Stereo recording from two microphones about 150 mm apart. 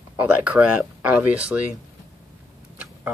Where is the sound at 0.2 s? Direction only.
10° right (ahead or behind).